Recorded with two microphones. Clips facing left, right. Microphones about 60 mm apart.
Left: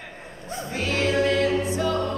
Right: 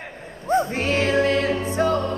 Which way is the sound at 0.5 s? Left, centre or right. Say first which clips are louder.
Right 6 dB; right.